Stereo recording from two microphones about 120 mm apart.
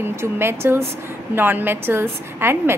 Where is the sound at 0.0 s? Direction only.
20° right (ahead or behind).